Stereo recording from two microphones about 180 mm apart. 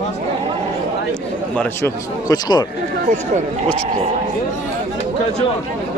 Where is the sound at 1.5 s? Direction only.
10° left (ahead or behind).